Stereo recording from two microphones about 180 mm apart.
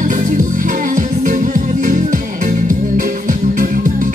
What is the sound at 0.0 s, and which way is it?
Music, 45° right (ahead or behind).